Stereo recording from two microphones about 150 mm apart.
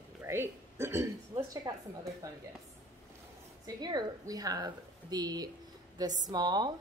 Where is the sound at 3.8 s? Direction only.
25° right (ahead or behind).